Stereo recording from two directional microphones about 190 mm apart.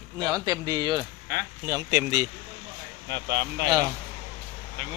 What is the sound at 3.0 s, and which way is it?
Speech, 65° right (ahead or behind).